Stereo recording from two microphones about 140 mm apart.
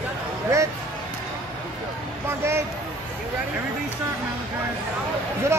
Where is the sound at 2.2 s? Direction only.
20° right (ahead or behind).